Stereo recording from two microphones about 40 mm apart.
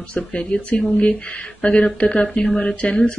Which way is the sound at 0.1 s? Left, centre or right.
Left.